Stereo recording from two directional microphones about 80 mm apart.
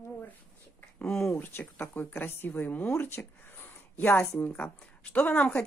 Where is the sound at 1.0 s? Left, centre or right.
Centre.